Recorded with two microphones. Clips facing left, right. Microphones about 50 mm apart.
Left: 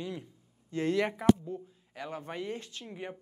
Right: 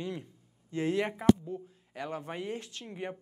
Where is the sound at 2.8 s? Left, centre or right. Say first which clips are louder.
Right 2 dB; centre.